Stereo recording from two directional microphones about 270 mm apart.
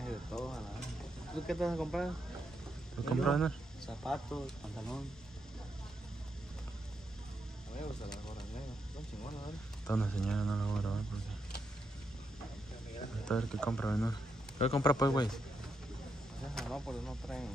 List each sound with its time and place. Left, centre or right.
0.0 s stir: centre
1.5 s speech: centre
3.1 s speech: centre
9.8 s speech: centre
13.2 s speech: centre
14.6 s a man's voice: left
16.5 s speech: centre